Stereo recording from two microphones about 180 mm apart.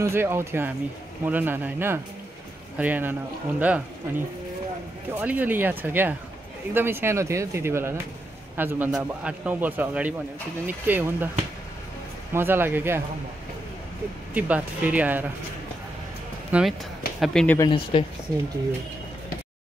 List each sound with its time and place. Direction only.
0.0 s a man's voice: 15° right (ahead or behind)
12.3 s a man's voice: 10° right (ahead or behind)
14.3 s a man's voice: 10° right (ahead or behind)
16.5 s a man's voice: 10° right (ahead or behind)
17.2 s speech: 5° left (ahead or behind)
17.6 s speech: 25° left (ahead or behind)